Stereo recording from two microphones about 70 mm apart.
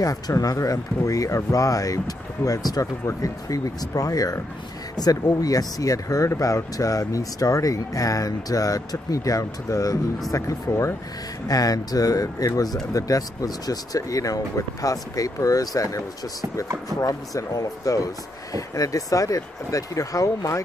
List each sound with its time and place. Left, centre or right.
0.0 s speech: left
10.3 s speech: left
11.4 s speech: left